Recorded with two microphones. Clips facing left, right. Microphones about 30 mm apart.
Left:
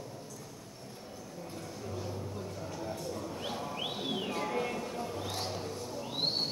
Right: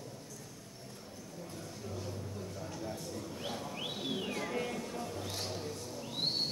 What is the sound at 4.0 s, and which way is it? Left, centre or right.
Music, centre.